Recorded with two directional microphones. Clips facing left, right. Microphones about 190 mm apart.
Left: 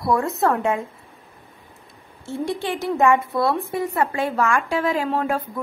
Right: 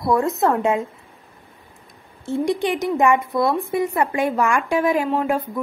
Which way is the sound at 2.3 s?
15° right (ahead or behind).